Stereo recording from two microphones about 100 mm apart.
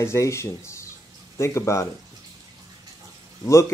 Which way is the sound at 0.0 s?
30° left (ahead or behind).